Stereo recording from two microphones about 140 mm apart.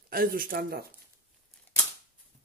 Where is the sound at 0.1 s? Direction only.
90° right.